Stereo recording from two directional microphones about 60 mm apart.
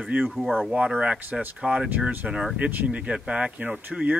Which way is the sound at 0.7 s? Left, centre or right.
Centre.